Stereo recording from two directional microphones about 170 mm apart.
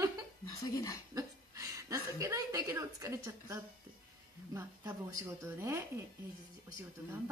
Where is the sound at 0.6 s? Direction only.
20° left (ahead or behind).